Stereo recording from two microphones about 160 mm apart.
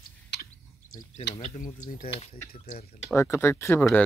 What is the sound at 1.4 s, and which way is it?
Speech, 55° left (ahead or behind).